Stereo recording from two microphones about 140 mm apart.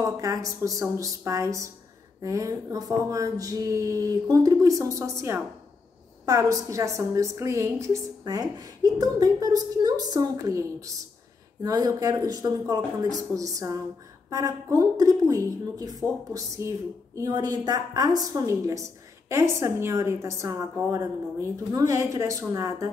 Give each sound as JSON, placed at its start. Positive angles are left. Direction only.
{"t": 0.0, "sound": "a woman's voice", "side_deg": -25}